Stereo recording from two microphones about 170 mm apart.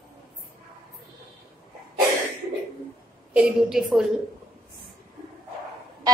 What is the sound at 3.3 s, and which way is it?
Speech, 5° right (ahead or behind).